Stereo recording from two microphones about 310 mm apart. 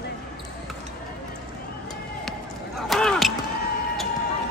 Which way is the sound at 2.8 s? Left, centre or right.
Centre.